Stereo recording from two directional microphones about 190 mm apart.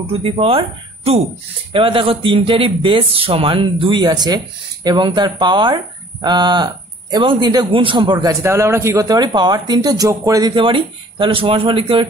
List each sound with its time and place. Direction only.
0.2 s a man's voice: 30° right (ahead or behind)